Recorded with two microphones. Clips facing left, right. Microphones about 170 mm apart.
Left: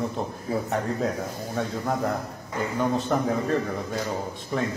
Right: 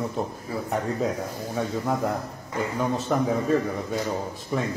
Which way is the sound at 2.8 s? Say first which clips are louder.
Left 1 dB; centre (ahead or behind).